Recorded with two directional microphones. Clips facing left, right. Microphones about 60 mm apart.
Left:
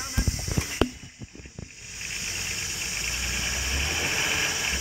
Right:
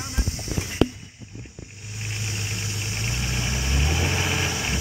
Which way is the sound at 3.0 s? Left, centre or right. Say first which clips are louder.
Right 3 dB; centre.